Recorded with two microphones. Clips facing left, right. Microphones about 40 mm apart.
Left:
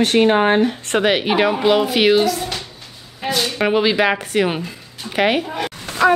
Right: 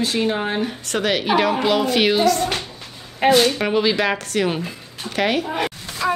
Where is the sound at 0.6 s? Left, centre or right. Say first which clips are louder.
Left 5 dB; left; by 2.5 s centre.